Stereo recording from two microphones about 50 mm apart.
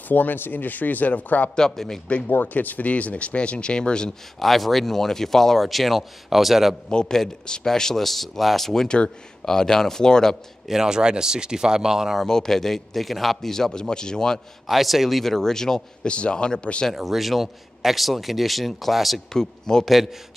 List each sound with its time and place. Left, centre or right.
0.1 s speech: left
1.5 s speech: centre
2.0 s speech: left
4.4 s speech: centre
6.9 s speech: centre
10.7 s speech: centre
12.2 s speech: centre
14.7 s speech: centre
16.1 s speech: left
16.9 s speech: centre
19.3 s speech: centre